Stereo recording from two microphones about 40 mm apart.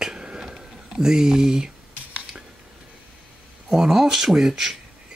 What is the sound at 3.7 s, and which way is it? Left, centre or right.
Speech, centre.